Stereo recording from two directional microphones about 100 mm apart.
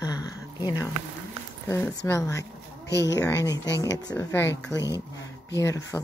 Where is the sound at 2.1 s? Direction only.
30° left (ahead or behind).